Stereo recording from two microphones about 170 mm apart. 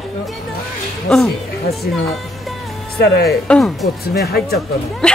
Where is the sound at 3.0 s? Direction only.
65° left (ahead or behind).